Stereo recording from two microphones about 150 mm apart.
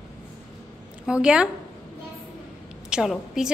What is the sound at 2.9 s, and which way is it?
Speech, 5° right (ahead or behind).